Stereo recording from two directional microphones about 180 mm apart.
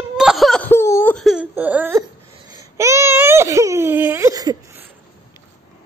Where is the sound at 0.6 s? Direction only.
15° left (ahead or behind).